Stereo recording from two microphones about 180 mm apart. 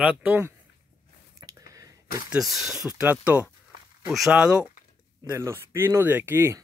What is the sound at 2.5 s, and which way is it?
Speech, centre (ahead or behind).